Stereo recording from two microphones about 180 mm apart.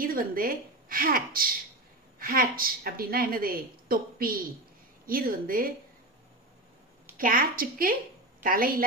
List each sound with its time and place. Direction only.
0.0 s a woman's voice: 55° right (ahead or behind)
7.2 s a woman's voice: 50° right (ahead or behind)